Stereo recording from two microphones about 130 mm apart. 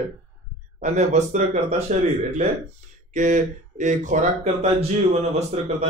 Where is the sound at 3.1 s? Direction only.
75° right (ahead or behind).